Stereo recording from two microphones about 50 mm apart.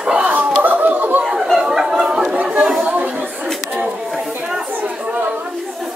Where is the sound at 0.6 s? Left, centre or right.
Right.